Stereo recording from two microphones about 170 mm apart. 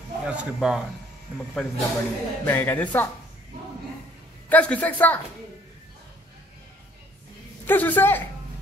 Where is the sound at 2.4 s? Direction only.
10° left (ahead or behind).